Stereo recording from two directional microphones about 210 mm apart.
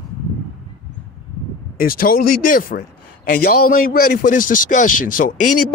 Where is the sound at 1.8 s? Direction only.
45° left (ahead or behind).